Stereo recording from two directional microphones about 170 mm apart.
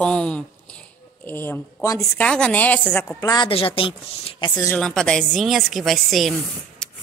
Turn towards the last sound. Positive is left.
turn(degrees=0)  # may be behind; listen again after turning